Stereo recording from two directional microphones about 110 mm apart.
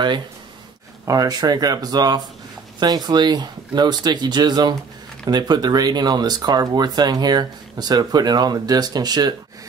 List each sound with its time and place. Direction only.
1.0 s speech: 35° right (ahead or behind)